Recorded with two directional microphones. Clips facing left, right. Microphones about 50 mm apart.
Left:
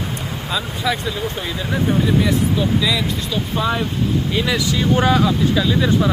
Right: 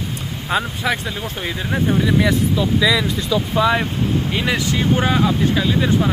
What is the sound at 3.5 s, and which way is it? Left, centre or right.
Speech, right.